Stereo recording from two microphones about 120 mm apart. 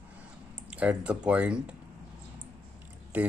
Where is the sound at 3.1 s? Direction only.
10° right (ahead or behind).